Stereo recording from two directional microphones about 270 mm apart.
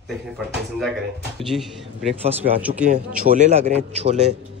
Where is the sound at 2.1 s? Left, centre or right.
Right.